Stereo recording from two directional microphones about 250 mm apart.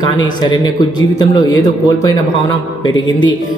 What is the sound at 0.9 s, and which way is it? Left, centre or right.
A man's voice, centre.